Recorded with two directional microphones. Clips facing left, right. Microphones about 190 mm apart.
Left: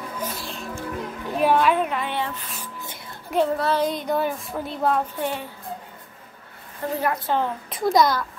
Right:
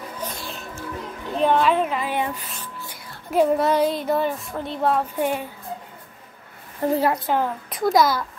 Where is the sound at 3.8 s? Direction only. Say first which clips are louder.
Right 2 dB; 5° right (ahead or behind).